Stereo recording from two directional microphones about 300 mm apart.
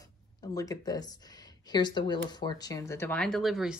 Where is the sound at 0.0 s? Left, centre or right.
Centre.